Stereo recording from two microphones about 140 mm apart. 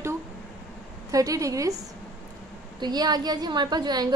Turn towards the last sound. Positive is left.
turn(degrees=-30)  # may be behind; listen again after turning